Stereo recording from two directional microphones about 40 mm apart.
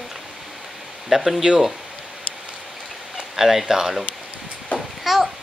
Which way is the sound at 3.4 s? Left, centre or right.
Centre.